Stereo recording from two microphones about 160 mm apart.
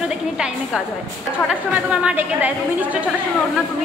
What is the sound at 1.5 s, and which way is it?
A woman's voice, 10° right (ahead or behind).